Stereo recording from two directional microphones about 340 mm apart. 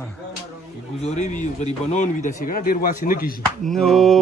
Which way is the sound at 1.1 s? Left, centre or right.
Left.